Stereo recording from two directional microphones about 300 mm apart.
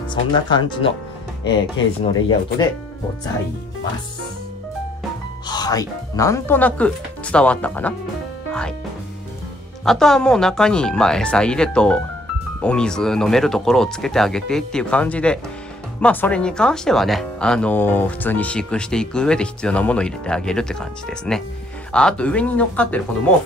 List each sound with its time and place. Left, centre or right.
0.1 s speech: centre
1.4 s speech: left
5.5 s speech: centre
8.5 s music: centre
9.8 s speech: centre